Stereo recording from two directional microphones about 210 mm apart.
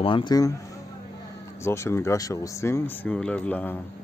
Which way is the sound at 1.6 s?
10° left (ahead or behind).